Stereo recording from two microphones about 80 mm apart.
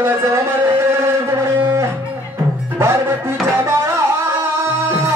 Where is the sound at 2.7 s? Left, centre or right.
Right.